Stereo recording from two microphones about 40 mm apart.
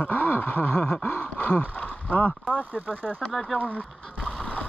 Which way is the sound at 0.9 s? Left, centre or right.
Left.